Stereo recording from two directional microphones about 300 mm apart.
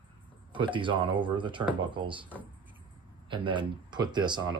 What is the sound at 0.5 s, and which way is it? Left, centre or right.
Speech, centre.